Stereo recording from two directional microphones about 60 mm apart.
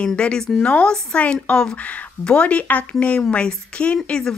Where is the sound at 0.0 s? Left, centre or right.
Centre.